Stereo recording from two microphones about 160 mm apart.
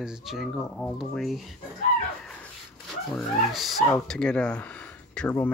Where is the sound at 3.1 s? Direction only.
Centre (ahead or behind).